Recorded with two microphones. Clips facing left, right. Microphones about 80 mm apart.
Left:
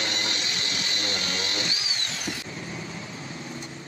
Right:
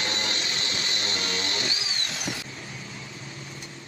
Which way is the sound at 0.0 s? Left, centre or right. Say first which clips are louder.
Even; right.